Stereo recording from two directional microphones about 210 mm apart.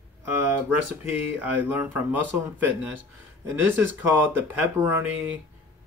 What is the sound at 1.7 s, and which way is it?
Speech, 10° right (ahead or behind).